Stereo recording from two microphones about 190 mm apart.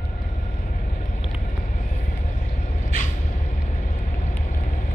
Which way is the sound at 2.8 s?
40° left (ahead or behind).